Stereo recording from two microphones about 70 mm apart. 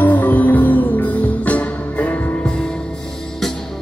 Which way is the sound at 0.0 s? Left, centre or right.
Left.